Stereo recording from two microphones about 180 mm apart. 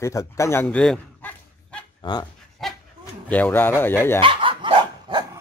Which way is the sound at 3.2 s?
10° left (ahead or behind).